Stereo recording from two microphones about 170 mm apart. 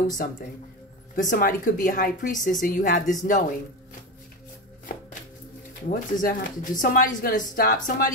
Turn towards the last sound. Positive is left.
turn(degrees=60)  # may be behind; listen again after turning